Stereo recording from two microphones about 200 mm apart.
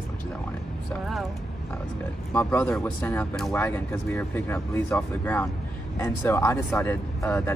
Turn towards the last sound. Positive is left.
turn(degrees=10)  # may be behind; listen again after turning